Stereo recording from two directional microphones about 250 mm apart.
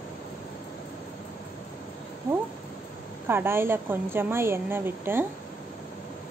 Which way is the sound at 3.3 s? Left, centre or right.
Centre.